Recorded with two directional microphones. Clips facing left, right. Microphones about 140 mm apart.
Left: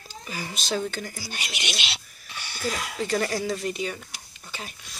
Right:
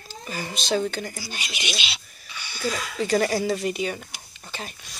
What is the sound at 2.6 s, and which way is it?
Speech, 55° left (ahead or behind).